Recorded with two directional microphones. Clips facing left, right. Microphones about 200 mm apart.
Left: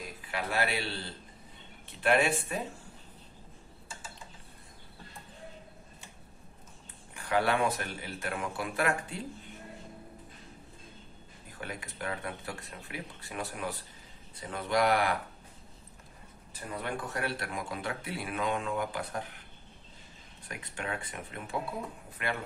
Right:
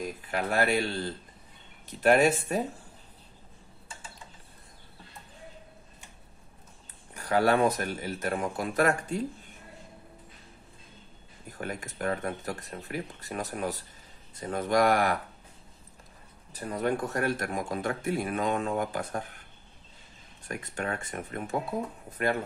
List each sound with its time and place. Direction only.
0.0 s a man's voice: 45° right (ahead or behind)
7.2 s speech: 40° right (ahead or behind)
11.5 s a man's voice: 45° right (ahead or behind)
16.5 s a man's voice: 40° right (ahead or behind)
20.4 s a man's voice: 45° right (ahead or behind)